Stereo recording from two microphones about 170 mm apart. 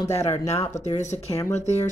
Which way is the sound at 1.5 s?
40° left (ahead or behind).